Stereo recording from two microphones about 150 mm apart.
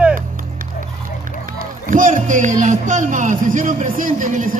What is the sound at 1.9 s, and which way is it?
A man's voice, 60° right (ahead or behind).